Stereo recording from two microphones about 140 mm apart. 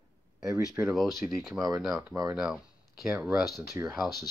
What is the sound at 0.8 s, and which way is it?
Speech, centre (ahead or behind).